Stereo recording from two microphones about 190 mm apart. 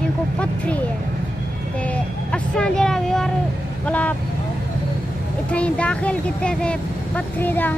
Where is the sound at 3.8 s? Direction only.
5° left (ahead or behind).